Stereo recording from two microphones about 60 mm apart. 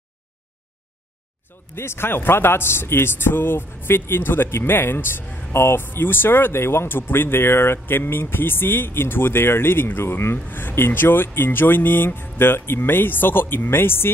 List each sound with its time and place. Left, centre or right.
1.8 s speech: left